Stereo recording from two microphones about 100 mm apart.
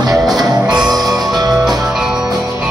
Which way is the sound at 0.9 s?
40° right (ahead or behind).